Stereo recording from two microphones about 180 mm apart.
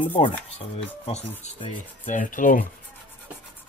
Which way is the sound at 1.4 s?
40° left (ahead or behind).